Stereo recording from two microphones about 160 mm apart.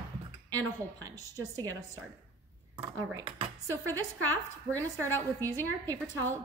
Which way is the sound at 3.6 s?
15° left (ahead or behind).